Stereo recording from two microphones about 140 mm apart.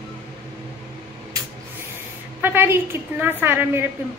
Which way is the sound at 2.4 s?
15° right (ahead or behind).